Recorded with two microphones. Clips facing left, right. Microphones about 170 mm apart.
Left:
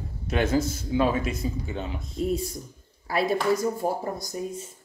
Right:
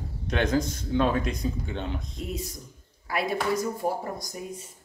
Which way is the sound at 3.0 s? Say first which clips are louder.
Left 4 dB; 30° left (ahead or behind).